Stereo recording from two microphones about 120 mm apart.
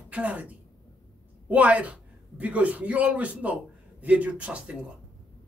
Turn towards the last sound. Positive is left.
turn(degrees=-10)  # may be behind; listen again after turning